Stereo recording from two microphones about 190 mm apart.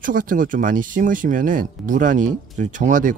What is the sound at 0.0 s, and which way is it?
Speech, 45° right (ahead or behind).